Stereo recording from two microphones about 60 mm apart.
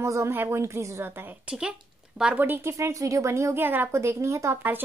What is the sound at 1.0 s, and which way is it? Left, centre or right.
Speech, right.